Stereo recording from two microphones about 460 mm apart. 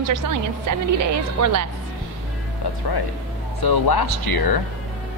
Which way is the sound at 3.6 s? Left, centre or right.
Left.